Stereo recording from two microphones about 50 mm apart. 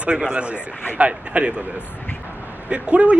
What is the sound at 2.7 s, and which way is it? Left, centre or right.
Speech, right.